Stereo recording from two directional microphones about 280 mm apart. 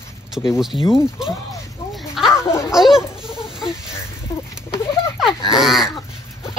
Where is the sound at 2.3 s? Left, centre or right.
Centre.